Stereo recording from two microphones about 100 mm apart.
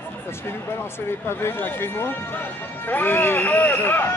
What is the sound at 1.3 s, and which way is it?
Speech, 25° left (ahead or behind).